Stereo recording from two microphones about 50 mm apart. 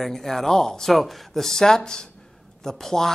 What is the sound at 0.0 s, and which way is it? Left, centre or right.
Speech, centre.